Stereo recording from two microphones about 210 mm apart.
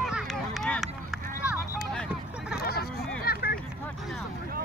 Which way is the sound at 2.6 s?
45° left (ahead or behind).